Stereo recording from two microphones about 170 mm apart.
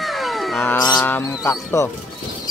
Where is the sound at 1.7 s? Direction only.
20° left (ahead or behind).